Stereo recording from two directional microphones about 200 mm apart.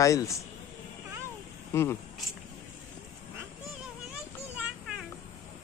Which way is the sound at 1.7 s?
15° left (ahead or behind).